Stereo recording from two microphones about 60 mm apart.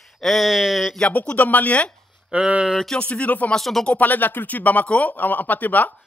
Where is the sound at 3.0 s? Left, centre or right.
Left.